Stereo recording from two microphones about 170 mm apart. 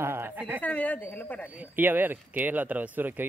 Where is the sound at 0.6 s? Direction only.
10° left (ahead or behind).